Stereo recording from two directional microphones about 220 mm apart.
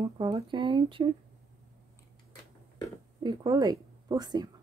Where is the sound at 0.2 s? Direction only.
20° right (ahead or behind).